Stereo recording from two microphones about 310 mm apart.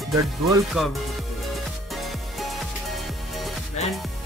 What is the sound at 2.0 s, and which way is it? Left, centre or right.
Music, centre.